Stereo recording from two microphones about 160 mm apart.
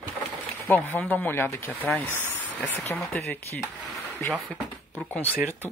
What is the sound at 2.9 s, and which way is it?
Speech, 10° left (ahead or behind).